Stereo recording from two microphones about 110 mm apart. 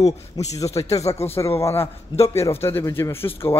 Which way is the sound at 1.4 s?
25° left (ahead or behind).